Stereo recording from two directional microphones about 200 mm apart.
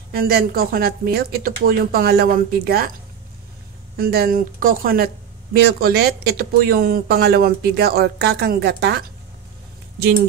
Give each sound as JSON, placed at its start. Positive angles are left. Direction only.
{"t": 0.1, "sound": "speech", "side_deg": -50}
{"t": 3.9, "sound": "speech", "side_deg": -50}